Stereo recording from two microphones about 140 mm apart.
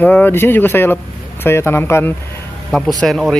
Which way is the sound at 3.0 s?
Centre (ahead or behind).